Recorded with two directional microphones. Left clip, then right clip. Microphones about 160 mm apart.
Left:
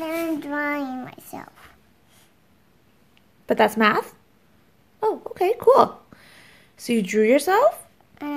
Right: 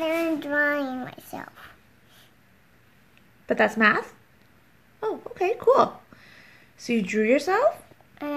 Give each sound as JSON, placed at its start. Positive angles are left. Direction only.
{"t": 0.0, "sound": "a child's voice", "side_deg": -5}
{"t": 3.4, "sound": "speech", "side_deg": 25}
{"t": 5.0, "sound": "a sound", "side_deg": 25}
{"t": 6.9, "sound": "speech", "side_deg": 25}
{"t": 8.2, "sound": "speech", "side_deg": 0}